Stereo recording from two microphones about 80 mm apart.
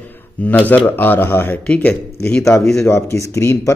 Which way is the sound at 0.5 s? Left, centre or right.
Left.